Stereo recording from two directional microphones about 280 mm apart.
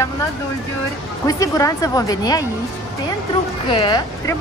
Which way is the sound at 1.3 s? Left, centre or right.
Centre.